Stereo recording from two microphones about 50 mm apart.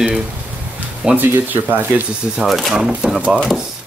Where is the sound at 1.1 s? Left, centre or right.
Right.